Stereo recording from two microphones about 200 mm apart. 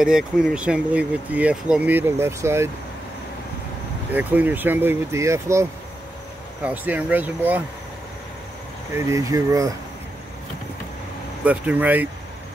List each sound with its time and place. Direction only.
0.0 s speech: 5° right (ahead or behind)
4.1 s speech: 10° right (ahead or behind)
8.9 s speech: 15° right (ahead or behind)
11.4 s speech: 10° right (ahead or behind)